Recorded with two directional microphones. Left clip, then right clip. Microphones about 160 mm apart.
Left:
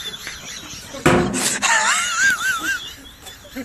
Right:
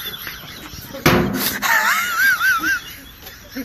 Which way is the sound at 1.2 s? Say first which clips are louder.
Even; 15° left (ahead or behind).